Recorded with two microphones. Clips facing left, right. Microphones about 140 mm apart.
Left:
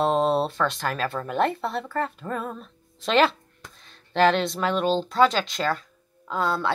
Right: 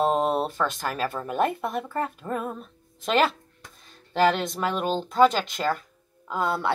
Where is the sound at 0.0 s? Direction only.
10° right (ahead or behind).